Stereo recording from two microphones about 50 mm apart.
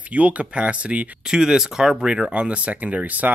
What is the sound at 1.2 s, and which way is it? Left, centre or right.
Speech, centre.